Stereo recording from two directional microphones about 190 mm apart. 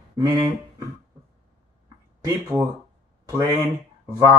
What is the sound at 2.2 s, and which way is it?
Speech, 15° right (ahead or behind).